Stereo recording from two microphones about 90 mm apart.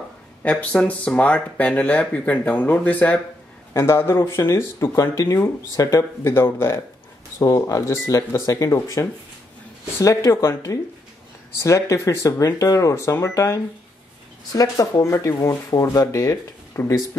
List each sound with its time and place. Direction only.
0.4 s speech: 15° left (ahead or behind)
3.7 s speech: 30° left (ahead or behind)
14.8 s speech: 30° left (ahead or behind)